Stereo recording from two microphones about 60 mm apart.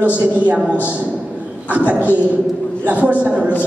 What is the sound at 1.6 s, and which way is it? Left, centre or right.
A man's voice, right.